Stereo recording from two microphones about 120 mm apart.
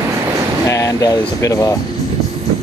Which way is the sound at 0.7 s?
25° left (ahead or behind).